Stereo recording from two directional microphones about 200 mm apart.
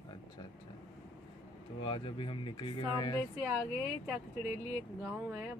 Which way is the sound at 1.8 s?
25° left (ahead or behind).